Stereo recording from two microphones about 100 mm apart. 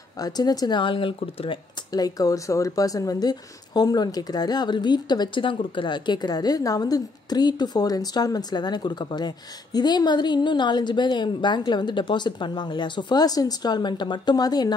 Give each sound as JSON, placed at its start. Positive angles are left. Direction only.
{"t": 0.2, "sound": "speech", "side_deg": 40}
{"t": 1.9, "sound": "speech", "side_deg": 40}